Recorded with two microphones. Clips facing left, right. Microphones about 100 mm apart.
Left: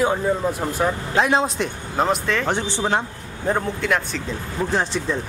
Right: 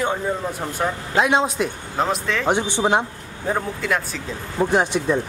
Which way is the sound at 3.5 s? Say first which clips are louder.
Left 1 dB; centre (ahead or behind).